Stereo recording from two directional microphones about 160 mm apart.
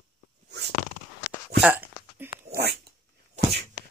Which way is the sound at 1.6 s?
10° right (ahead or behind).